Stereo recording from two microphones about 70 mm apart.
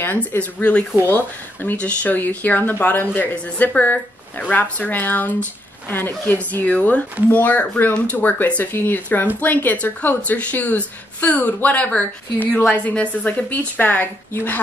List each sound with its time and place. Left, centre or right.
0.0 s speech: left
0.4 s speech: left